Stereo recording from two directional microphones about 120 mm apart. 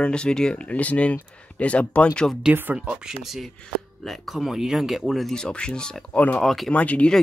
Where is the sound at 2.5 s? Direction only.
15° right (ahead or behind).